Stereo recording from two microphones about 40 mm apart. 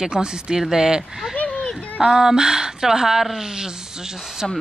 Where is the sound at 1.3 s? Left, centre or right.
Left.